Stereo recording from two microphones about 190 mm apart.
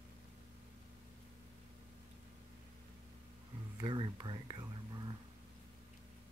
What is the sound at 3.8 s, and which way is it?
Whispering, 25° right (ahead or behind).